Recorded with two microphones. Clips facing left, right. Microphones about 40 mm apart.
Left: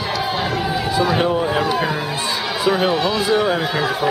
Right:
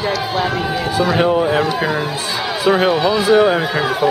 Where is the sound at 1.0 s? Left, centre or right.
Centre.